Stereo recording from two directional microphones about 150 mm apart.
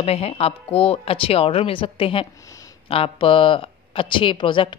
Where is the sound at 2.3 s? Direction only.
20° left (ahead or behind).